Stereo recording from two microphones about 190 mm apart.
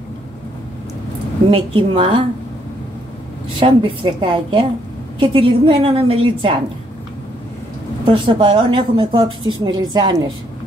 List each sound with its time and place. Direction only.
1.5 s a woman's voice: 30° right (ahead or behind)
3.5 s a woman's voice: 30° right (ahead or behind)
8.0 s a woman's voice: 25° right (ahead or behind)